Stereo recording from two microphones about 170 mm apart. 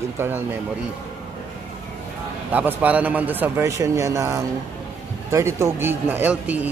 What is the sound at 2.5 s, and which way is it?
Speech, 10° right (ahead or behind).